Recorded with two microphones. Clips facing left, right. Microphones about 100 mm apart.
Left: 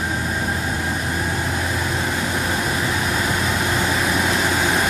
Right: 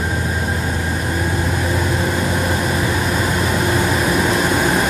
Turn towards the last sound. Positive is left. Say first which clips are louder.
# right 3 dB
turn(degrees=-5)  # may be behind; listen again after turning